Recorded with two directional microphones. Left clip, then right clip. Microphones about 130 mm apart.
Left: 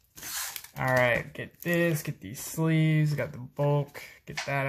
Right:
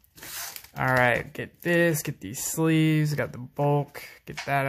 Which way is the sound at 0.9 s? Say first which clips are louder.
Right 2 dB; 45° right (ahead or behind).